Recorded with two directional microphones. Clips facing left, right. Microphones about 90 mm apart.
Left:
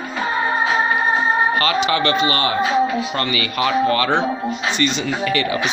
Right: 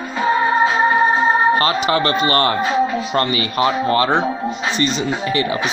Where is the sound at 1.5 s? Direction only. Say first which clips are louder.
Right 1 dB; 35° right (ahead or behind).